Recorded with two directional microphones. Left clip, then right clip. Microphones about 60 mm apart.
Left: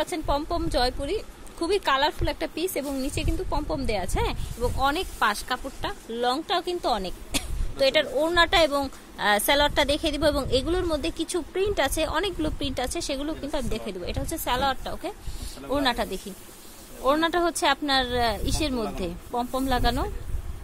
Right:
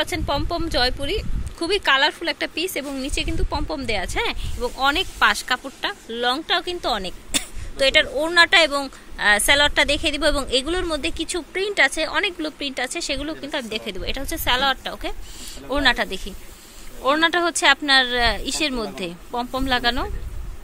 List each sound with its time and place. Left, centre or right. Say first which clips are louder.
0.0 s speech: right 3 dB; centre
2.3 s speech: right 4 dB; left
3.0 s speech: right 4 dB; centre
8.2 s speech: right 5 dB; left
8.8 s a woman's voice: right 6 dB; left
11.7 s a woman's voice: right 8 dB; left
12.4 s speech: right 2 dB; left
12.8 s a woman's voice: right 4 dB; left
13.8 s speech: right 4 dB; centre
15.7 s speech: right 6 dB; centre